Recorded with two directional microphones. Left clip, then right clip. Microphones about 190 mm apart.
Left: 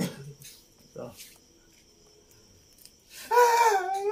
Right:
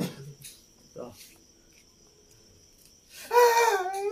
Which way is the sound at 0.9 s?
45° left (ahead or behind).